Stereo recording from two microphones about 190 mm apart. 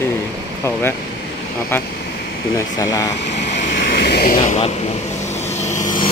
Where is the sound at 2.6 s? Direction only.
20° left (ahead or behind).